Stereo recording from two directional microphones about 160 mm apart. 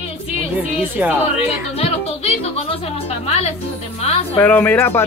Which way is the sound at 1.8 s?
40° left (ahead or behind).